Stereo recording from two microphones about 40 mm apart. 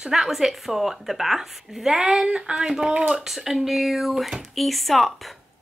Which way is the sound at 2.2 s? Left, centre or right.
Right.